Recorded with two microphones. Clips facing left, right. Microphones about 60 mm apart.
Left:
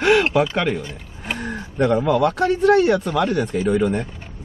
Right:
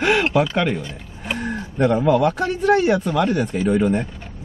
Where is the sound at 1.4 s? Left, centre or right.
Centre.